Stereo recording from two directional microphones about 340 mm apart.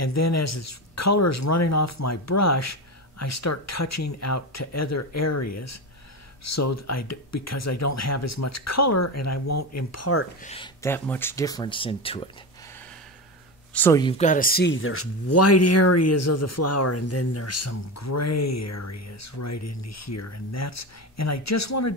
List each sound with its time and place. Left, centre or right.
0.0 s speech: left
10.4 s speech: centre
13.7 s speech: centre; by 21.9 s left